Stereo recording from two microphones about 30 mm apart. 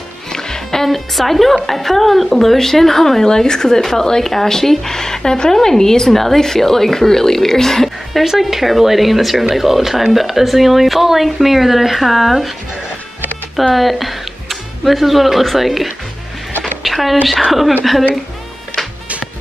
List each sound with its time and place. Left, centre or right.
0.3 s music: left
0.8 s speech: centre
8.1 s speech: centre
13.7 s speech: centre
16.8 s a sound: centre
17.5 s speech: centre